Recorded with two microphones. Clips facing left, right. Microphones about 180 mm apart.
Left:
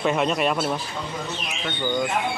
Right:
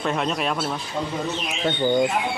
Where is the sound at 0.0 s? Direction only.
5° left (ahead or behind).